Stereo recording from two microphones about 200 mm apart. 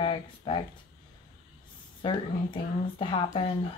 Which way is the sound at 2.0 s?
25° left (ahead or behind).